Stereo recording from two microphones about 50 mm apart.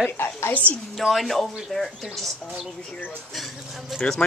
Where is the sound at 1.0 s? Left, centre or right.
Centre.